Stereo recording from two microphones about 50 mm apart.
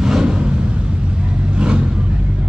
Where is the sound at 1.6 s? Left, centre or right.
Centre.